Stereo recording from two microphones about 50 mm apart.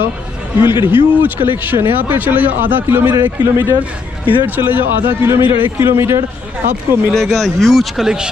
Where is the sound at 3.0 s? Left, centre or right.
Right.